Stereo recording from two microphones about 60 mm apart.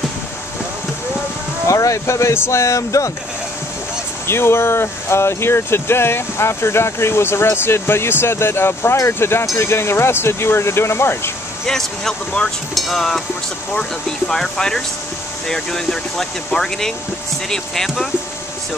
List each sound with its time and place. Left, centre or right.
1.7 s speech: left
4.3 s speech: left
11.6 s speech: centre